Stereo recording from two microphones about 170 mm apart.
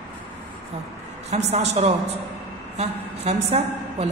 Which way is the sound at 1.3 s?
40° right (ahead or behind).